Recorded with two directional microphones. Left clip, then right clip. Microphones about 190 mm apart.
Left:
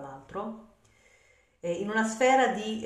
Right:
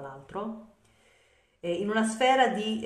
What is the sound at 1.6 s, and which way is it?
A woman's voice, 25° right (ahead or behind).